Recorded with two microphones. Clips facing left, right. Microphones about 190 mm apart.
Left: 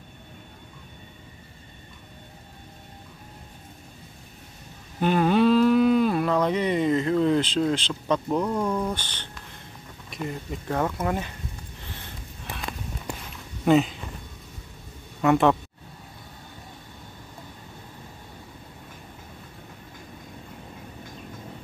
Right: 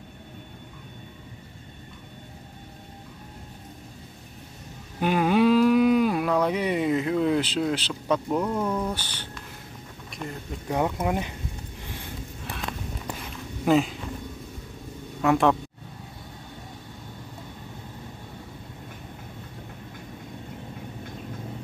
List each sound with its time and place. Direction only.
5.0 s a sound: 10° right (ahead or behind)
10.7 s speech: 15° right (ahead or behind)
13.7 s speech: centre (ahead or behind)
15.2 s speech: centre (ahead or behind)